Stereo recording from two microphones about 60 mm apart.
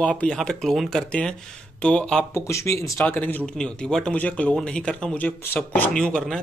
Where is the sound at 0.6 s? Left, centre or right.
Centre.